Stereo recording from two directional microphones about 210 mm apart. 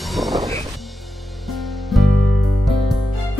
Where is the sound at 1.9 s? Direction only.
Centre (ahead or behind).